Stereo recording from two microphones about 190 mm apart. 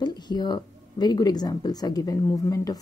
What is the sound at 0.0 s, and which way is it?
Speech, 20° left (ahead or behind).